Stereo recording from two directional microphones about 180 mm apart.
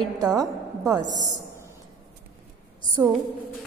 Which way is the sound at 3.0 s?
15° right (ahead or behind).